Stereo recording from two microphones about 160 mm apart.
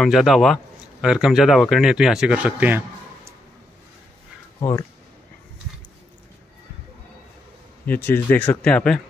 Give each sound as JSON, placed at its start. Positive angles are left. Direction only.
{"t": 0.0, "sound": "speech", "side_deg": 0}
{"t": 4.6, "sound": "speech", "side_deg": 20}
{"t": 7.8, "sound": "speech", "side_deg": 10}